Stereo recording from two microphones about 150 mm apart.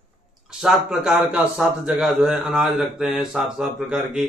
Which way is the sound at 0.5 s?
Centre (ahead or behind).